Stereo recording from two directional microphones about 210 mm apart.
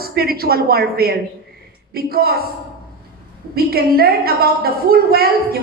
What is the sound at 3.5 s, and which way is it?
A woman's voice, 45° right (ahead or behind).